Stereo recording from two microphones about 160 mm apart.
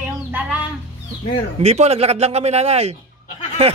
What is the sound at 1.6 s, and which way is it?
A man's voice, 40° right (ahead or behind).